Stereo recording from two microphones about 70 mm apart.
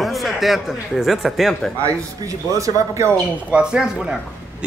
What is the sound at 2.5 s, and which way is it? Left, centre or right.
Speech, right.